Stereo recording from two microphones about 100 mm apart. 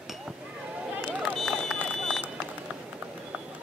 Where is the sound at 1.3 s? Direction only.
5° left (ahead or behind).